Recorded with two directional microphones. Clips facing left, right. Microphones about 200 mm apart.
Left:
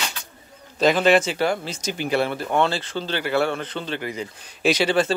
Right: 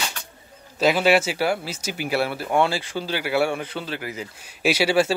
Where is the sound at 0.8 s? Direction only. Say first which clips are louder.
Left 1 dB; 10° right (ahead or behind).